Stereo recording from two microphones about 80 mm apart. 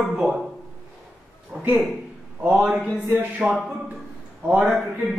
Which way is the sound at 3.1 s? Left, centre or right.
Right.